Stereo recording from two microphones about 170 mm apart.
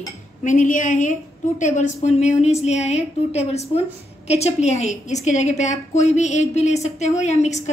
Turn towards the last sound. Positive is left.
turn(degrees=40)  # may be behind; listen again after turning